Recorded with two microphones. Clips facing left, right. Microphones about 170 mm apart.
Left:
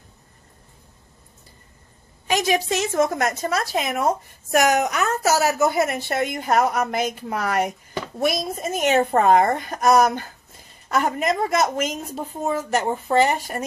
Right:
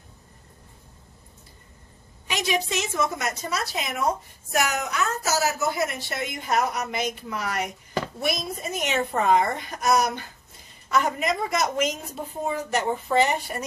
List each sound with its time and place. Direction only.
2.2 s a woman's voice: 45° left (ahead or behind)
4.5 s a woman's voice: 75° left (ahead or behind); by 7.7 s 55° left (ahead or behind)
8.2 s a woman's voice: 45° left (ahead or behind)